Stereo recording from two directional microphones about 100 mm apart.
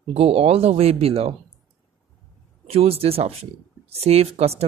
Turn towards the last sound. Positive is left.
turn(degrees=-90)